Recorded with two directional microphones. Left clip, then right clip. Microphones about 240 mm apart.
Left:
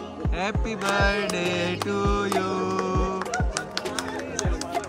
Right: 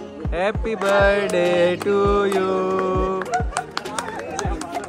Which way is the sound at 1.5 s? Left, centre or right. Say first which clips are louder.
Right 9 dB; centre.